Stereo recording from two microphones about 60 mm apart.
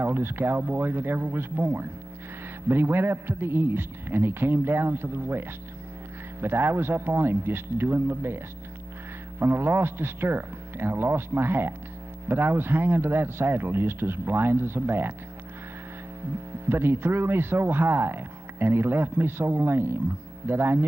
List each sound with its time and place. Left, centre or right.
0.0 s speech: right
9.4 s speech: right
16.6 s speech: right